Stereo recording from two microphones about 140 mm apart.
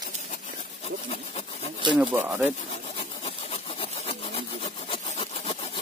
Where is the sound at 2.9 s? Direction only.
45° left (ahead or behind).